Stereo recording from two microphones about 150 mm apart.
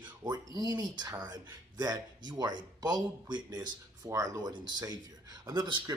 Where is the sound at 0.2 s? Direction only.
25° right (ahead or behind).